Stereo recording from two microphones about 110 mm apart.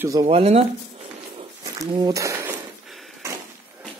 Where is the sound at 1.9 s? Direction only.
35° right (ahead or behind).